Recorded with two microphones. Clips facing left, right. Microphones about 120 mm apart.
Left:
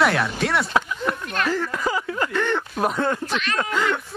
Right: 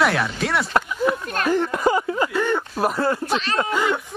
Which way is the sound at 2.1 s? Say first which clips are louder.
Right 2 dB; 10° right (ahead or behind).